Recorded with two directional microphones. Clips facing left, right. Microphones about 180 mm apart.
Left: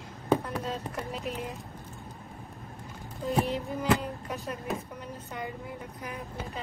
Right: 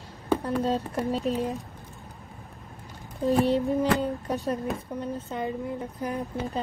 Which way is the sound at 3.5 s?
35° right (ahead or behind).